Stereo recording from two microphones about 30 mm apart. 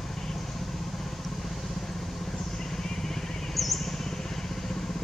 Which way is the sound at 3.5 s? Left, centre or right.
Centre.